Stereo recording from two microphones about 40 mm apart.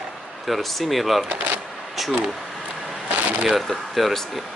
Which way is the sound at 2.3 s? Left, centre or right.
Centre.